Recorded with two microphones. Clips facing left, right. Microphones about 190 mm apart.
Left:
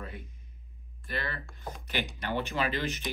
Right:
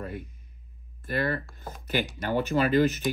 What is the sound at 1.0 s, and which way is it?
Speech, 50° right (ahead or behind).